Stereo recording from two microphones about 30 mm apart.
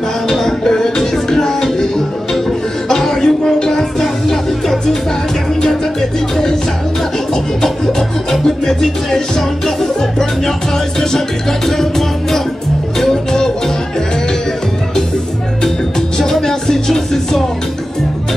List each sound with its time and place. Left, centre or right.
0.3 s music: centre
2.9 s a sound: centre
4.0 s music: centre
7.6 s music: centre
16.2 s music: centre